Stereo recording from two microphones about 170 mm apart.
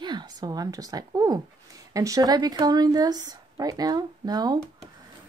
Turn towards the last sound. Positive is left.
turn(degrees=-25)  # may be behind; listen again after turning